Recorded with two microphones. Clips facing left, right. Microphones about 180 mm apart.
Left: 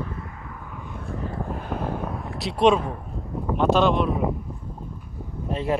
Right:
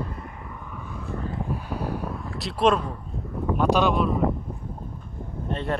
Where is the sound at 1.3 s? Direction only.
50° left (ahead or behind).